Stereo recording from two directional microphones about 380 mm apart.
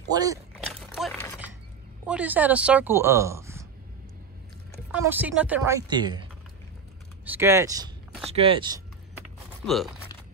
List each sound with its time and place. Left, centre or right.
0.1 s speech: centre
0.9 s a sound: centre
2.0 s speech: centre
4.9 s speech: centre
7.2 s speech: centre